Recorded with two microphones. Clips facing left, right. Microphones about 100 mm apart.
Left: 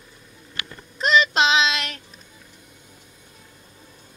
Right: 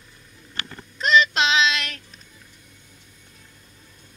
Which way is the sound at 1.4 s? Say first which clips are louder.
Left 1 dB; 5° left (ahead or behind).